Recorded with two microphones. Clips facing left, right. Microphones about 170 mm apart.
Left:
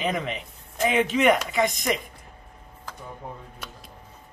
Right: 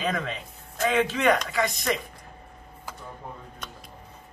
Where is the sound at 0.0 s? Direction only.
15° left (ahead or behind).